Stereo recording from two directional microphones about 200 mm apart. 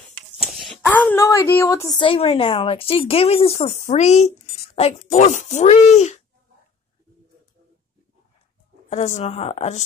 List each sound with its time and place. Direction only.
0.4 s speech: centre (ahead or behind); by 6.2 s 35° left (ahead or behind)
8.9 s speech: 35° left (ahead or behind)